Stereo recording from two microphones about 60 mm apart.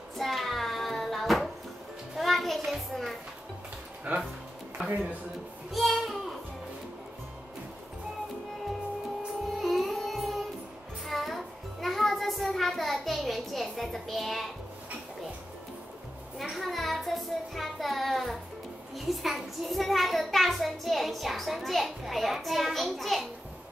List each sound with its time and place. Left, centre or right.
0.2 s child singing: centre
2.1 s a sound: centre
4.1 s speech: right
5.7 s speech: centre
9.6 s music: centre
16.3 s a child's voice: centre